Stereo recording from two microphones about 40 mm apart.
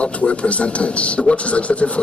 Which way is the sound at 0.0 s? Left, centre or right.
Left.